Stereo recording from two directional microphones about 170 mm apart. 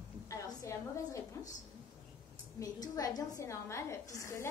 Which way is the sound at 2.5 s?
20° left (ahead or behind).